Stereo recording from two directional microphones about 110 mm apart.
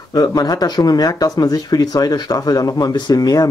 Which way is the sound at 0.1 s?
35° left (ahead or behind).